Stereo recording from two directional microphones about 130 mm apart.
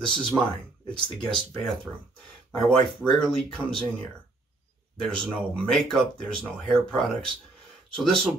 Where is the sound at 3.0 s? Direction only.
Centre (ahead or behind).